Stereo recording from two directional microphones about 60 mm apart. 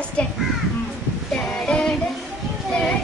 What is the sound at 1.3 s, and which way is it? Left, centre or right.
Child singing, centre.